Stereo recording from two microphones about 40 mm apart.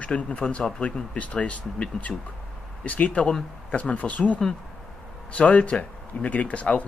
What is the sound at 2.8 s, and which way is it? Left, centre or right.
A man's voice, left.